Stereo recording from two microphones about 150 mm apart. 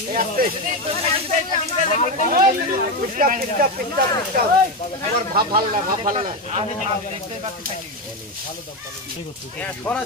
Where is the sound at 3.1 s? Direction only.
65° right (ahead or behind).